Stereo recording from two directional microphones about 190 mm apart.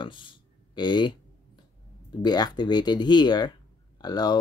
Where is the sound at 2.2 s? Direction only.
20° left (ahead or behind).